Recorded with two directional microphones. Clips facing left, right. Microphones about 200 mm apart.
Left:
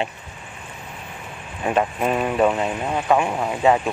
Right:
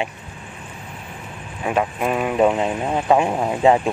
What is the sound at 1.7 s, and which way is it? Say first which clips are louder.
Speech: even; centre (ahead or behind).